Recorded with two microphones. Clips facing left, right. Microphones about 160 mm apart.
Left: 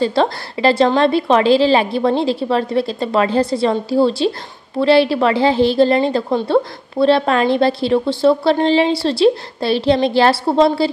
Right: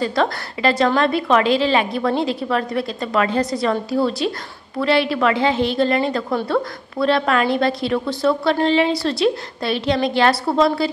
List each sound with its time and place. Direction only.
0.0 s a woman's voice: 30° left (ahead or behind)